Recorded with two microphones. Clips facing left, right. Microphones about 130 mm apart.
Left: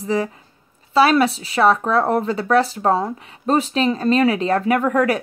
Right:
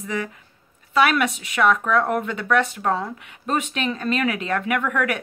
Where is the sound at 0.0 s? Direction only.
30° left (ahead or behind).